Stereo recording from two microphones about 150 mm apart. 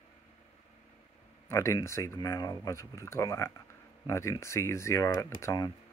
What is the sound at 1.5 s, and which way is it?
Speech, 20° left (ahead or behind).